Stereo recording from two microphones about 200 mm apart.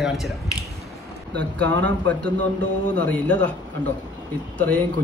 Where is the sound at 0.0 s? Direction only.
Centre (ahead or behind).